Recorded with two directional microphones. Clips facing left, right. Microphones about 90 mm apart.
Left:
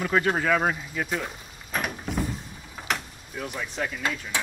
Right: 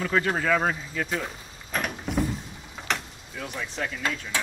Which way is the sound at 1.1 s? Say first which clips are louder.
Even; 5° left (ahead or behind).